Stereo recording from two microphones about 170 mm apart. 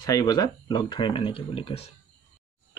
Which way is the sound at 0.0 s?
20° left (ahead or behind).